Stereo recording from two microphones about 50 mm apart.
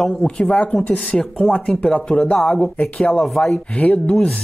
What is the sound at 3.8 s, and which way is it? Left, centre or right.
Speech, left.